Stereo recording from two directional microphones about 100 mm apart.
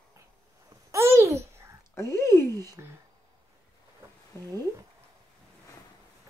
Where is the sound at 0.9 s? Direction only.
25° right (ahead or behind).